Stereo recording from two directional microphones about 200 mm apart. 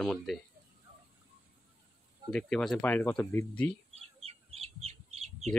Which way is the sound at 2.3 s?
5° left (ahead or behind).